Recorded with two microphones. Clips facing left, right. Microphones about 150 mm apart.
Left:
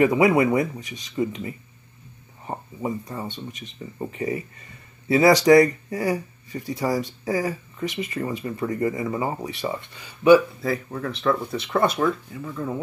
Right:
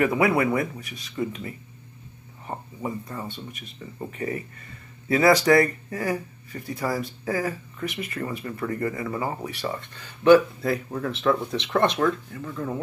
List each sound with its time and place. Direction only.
0.0 s speech: 15° left (ahead or behind)
3.3 s speech: 10° right (ahead or behind)
4.0 s speech: 15° left (ahead or behind); by 12.8 s centre (ahead or behind)